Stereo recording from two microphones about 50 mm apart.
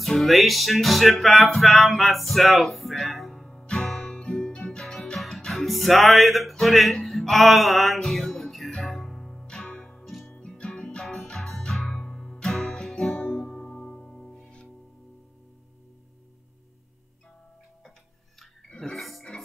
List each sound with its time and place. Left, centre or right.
0.0 s music: centre
10.0 s music: centre
10.4 s music: centre
18.9 s music: centre